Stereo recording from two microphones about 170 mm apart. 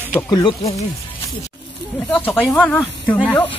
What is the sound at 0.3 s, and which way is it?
Speech, 30° left (ahead or behind).